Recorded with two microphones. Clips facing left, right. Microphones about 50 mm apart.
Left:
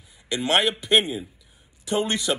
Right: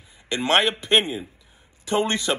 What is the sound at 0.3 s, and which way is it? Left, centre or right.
A man's voice, right.